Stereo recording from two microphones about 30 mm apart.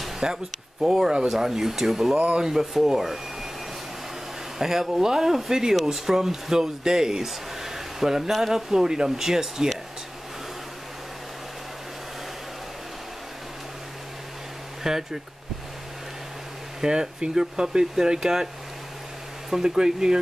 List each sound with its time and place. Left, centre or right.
0.2 s speech: centre
2.2 s speech: right
2.7 s speech: centre
4.6 s speech: centre
14.8 s speech: centre
16.8 s speech: right
19.5 s speech: right